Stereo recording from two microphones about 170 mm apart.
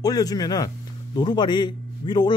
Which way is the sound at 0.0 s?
20° left (ahead or behind).